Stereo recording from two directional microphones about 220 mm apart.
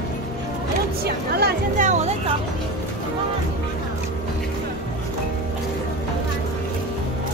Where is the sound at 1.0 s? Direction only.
45° right (ahead or behind).